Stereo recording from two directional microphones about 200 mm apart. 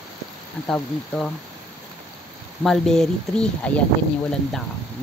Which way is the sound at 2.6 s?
Centre (ahead or behind).